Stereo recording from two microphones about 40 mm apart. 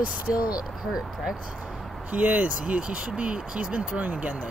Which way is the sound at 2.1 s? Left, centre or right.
Right.